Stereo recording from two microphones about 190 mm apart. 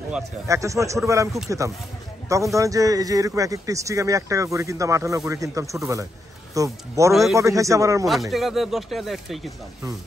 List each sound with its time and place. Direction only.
0.5 s a man's voice: 15° right (ahead or behind)
8.1 s speech: centre (ahead or behind)